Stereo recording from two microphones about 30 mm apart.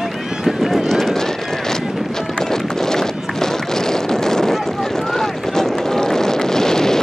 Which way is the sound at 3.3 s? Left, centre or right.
Centre.